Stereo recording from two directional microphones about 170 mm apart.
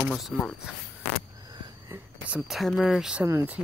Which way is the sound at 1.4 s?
25° right (ahead or behind).